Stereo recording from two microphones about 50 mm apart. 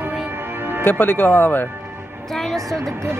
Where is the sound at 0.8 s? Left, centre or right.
Left.